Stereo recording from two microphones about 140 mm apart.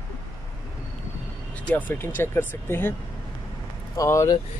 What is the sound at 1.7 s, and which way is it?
Speech, 10° left (ahead or behind).